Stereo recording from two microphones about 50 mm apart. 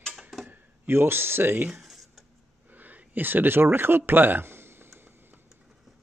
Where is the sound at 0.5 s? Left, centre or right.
Right.